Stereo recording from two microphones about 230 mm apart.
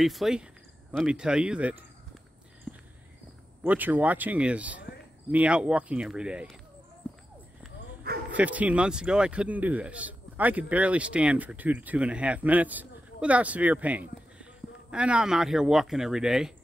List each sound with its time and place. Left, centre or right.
0.0 s speech: centre
2.7 s a sound: centre
3.6 s speech: centre
8.1 s bow-wow: right
8.4 s speech: centre